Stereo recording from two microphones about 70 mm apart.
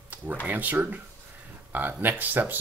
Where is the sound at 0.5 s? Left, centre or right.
Right.